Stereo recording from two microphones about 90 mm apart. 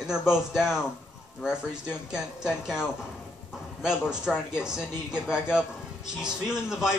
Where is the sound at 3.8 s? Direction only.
5° right (ahead or behind).